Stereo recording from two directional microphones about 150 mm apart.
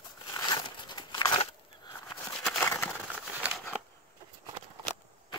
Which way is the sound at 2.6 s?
15° left (ahead or behind).